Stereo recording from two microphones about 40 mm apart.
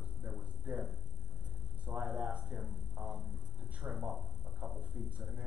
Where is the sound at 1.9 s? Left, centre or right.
Right.